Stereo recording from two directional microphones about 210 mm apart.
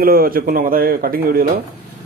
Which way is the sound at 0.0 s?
45° right (ahead or behind).